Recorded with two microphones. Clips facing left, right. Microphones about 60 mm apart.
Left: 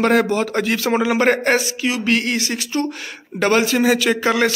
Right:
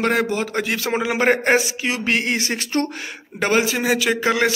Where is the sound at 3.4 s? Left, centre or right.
Centre.